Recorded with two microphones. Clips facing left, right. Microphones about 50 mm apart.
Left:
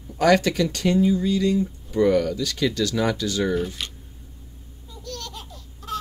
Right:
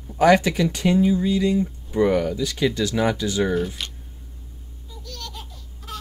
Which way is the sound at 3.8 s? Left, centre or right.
Centre.